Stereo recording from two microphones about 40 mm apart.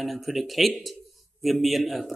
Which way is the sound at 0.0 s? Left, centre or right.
Centre.